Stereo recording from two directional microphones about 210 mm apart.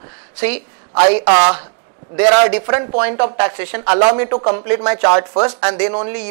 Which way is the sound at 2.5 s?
15° right (ahead or behind).